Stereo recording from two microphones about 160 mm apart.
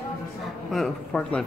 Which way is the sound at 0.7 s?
5° left (ahead or behind).